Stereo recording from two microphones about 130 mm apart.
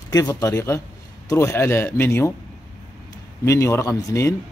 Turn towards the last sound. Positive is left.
turn(degrees=25)  # may be behind; listen again after turning